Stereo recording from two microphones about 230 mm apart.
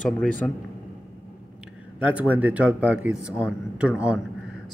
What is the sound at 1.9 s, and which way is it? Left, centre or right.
A man's voice, centre.